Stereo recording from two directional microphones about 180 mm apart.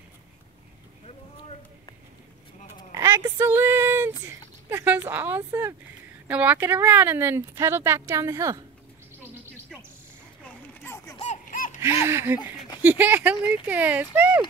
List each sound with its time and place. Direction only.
2.9 s a sound: 15° right (ahead or behind)
4.3 s speech: 15° right (ahead or behind)
9.2 s insect: 10° right (ahead or behind)
10.4 s a sound: 10° left (ahead or behind)
11.1 s baby laughter: 40° left (ahead or behind)
12.1 s speech: 15° right (ahead or behind)